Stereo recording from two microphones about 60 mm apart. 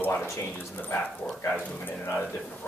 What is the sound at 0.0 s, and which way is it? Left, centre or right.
A man's voice, left.